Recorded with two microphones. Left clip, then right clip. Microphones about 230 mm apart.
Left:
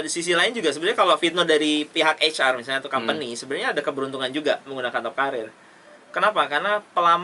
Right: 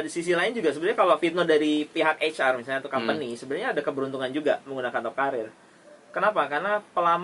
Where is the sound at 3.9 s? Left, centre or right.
Centre.